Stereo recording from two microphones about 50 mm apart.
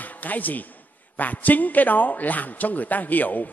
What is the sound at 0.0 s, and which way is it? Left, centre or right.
A man's voice, left.